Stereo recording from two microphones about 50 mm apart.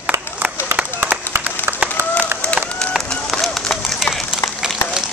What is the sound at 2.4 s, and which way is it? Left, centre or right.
Run, left.